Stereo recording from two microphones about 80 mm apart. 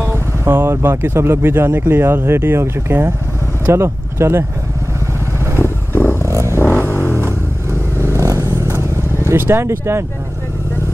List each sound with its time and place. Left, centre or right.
0.0 s speech: right
5.6 s vehicle: left
6.2 s vehicle: right
8.0 s vehicle: right
9.3 s speech: right